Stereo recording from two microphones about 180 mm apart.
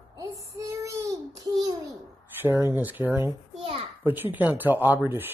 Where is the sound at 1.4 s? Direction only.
20° right (ahead or behind).